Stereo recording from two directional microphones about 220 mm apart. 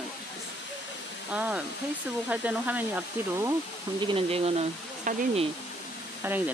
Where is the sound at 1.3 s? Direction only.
5° right (ahead or behind).